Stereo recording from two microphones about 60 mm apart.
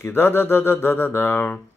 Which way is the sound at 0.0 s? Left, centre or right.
Left.